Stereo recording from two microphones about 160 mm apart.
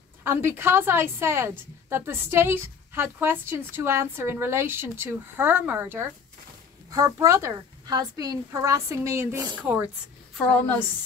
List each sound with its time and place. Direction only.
0.2 s a woman's voice: 15° right (ahead or behind)